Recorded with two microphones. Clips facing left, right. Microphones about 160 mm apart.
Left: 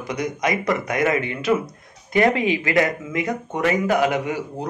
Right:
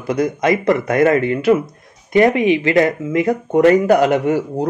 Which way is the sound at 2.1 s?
20° right (ahead or behind).